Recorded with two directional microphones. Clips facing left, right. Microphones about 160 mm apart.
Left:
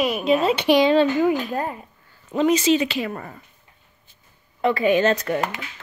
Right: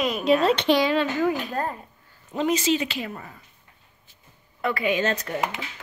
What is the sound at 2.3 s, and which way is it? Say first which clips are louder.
Speech: left 5 dB; 90° left.